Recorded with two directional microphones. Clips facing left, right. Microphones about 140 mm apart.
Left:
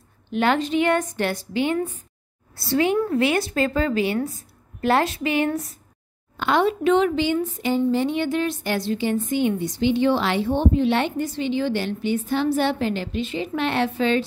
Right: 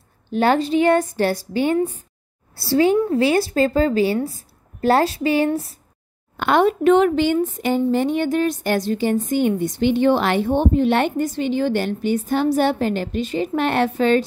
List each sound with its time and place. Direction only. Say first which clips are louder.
0.3 s speech: right 3 dB; 40° right (ahead or behind)
6.3 s a woman's voice: right 3 dB; 55° right (ahead or behind)